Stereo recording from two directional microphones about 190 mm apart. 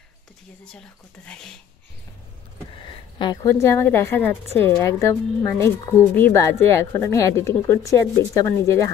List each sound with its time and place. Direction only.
0.7 s speech: 5° left (ahead or behind)
2.7 s speech: 25° left (ahead or behind)
3.6 s speech: 10° left (ahead or behind)